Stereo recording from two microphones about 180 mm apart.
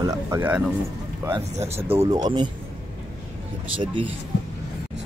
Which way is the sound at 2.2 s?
30° right (ahead or behind).